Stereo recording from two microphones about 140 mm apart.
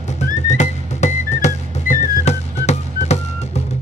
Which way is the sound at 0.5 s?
55° left (ahead or behind).